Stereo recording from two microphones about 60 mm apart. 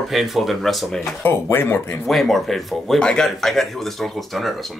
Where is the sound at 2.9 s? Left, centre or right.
Centre.